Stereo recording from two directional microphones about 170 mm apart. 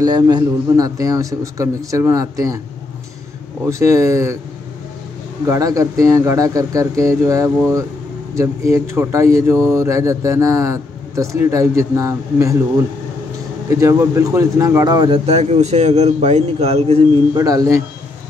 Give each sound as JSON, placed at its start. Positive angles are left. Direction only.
{"t": 0.0, "sound": "a man's voice", "side_deg": -25}
{"t": 3.6, "sound": "speech", "side_deg": -20}
{"t": 5.5, "sound": "a man's voice", "side_deg": -20}
{"t": 17.4, "sound": "a man's voice", "side_deg": -20}